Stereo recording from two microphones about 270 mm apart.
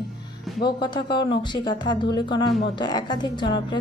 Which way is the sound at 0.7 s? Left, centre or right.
Centre.